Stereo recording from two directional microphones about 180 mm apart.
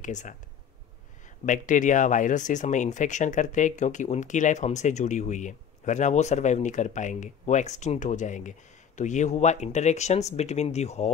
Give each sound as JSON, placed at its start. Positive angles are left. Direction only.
{"t": 0.0, "sound": "speech", "side_deg": 45}
{"t": 1.4, "sound": "speech", "side_deg": 45}